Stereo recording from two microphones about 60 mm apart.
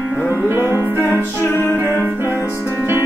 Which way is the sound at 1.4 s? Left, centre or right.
Left.